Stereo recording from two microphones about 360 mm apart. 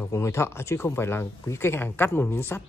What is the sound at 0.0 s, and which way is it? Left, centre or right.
A man's voice, centre.